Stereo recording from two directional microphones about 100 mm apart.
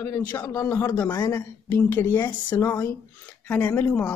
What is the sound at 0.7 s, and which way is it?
Speech, 25° left (ahead or behind).